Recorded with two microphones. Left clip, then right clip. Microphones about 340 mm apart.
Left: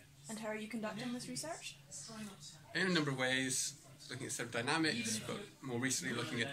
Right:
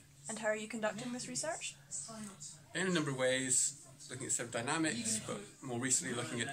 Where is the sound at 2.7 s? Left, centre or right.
Centre.